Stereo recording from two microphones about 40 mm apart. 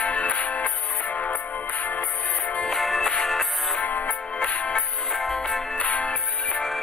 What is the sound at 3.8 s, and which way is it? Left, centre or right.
Music, left.